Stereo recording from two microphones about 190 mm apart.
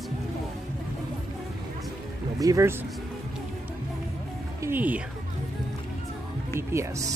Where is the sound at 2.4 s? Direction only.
15° right (ahead or behind).